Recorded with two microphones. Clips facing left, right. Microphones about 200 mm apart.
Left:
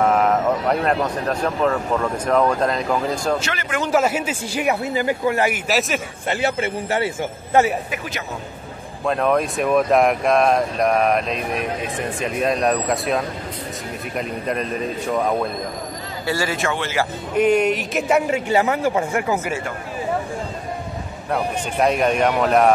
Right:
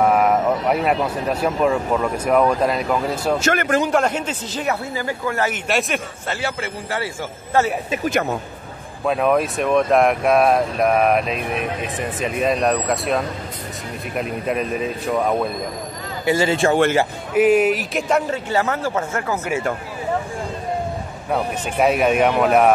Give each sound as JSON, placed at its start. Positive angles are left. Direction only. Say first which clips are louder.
{"t": 0.0, "sound": "speech", "louder": "right 1 dB", "side_deg": -10}
{"t": 3.3, "sound": "speech", "louder": "right 7 dB", "side_deg": -45}
{"t": 3.9, "sound": "speech", "louder": "left 1 dB", "side_deg": 5}
{"t": 5.7, "sound": "speech", "louder": "even", "side_deg": 0}
{"t": 6.2, "sound": "a man's voice", "louder": "left 4 dB", "side_deg": 20}
{"t": 8.0, "sound": "speech", "louder": "right 10 dB", "side_deg": -50}
{"t": 9.0, "sound": "speech", "louder": "right 1 dB", "side_deg": -5}
{"t": 16.3, "sound": "a man's voice", "louder": "right 6 dB", "side_deg": -20}
{"t": 17.3, "sound": "speech", "louder": "right 2 dB", "side_deg": -5}
{"t": 21.3, "sound": "speech", "louder": "even", "side_deg": -5}